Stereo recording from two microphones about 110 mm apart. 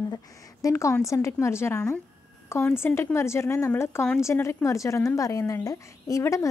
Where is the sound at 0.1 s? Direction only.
30° left (ahead or behind).